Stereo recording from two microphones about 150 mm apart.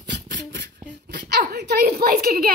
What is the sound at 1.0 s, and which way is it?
A woman's voice, 90° right.